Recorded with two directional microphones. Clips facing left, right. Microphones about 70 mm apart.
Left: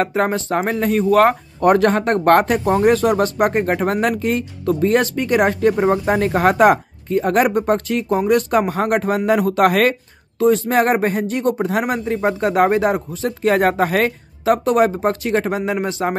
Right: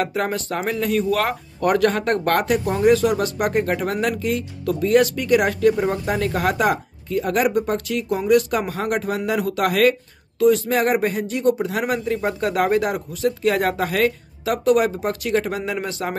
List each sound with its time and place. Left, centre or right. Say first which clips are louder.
0.0 s speech: left 4 dB; left